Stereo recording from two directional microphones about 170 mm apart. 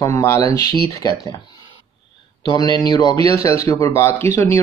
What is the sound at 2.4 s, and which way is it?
Speech, 25° left (ahead or behind).